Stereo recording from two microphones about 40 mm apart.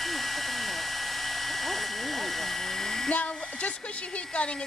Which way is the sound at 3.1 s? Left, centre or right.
Left.